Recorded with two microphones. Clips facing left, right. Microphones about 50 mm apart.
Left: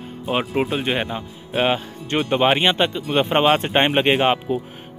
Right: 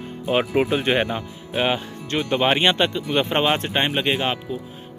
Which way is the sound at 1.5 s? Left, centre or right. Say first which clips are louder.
Left 2 dB; centre.